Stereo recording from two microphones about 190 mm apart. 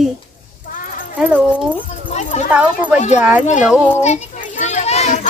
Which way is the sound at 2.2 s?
40° left (ahead or behind).